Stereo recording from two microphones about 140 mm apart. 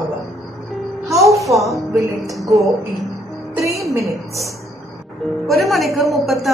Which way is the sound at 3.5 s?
20° right (ahead or behind).